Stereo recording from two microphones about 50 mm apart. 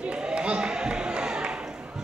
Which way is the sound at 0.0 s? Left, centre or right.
Centre.